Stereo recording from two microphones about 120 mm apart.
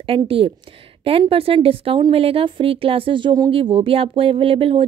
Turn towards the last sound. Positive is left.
turn(degrees=-50)  # may be behind; listen again after turning